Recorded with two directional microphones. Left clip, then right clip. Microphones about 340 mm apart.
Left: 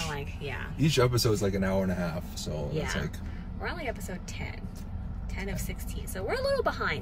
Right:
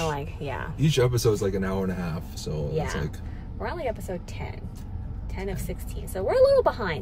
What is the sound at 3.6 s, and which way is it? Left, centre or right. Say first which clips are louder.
A woman's voice: right 5 dB; centre.